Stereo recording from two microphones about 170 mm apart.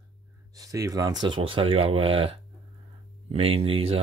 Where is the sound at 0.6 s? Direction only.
20° right (ahead or behind).